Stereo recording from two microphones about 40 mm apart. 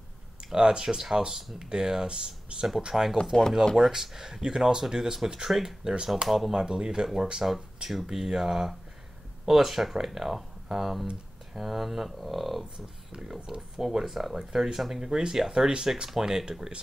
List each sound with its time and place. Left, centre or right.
0.5 s speech: centre
2.9 s speech: centre
6.5 s speech: centre
13.1 s speech: centre